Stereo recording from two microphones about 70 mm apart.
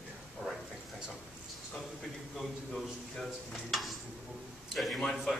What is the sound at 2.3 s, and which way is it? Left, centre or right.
Speech, centre.